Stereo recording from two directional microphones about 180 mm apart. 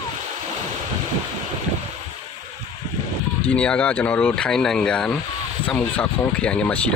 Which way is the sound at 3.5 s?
5° left (ahead or behind).